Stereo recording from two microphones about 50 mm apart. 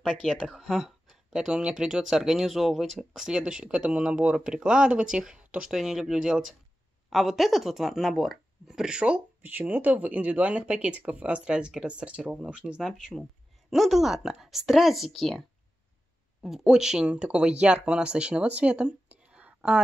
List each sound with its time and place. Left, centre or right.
0.0 s speech: centre
2.4 s speech: centre
3.2 s speech: centre
9.4 s speech: right
13.7 s speech: centre
16.4 s speech: centre; by 19.8 s right